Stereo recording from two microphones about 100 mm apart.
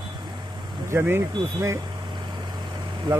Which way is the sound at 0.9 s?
25° right (ahead or behind).